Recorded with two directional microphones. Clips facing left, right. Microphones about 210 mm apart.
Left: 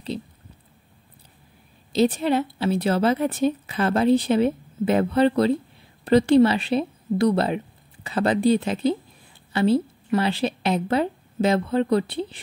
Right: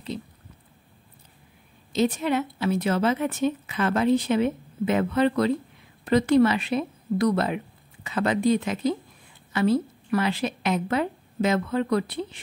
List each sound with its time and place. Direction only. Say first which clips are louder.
1.9 s a woman's voice: left 3 dB; 35° left (ahead or behind)